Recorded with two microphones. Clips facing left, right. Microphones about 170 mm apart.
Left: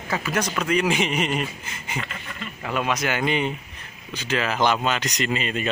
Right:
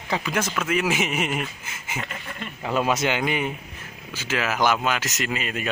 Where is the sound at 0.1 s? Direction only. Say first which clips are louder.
Even; 15° right (ahead or behind).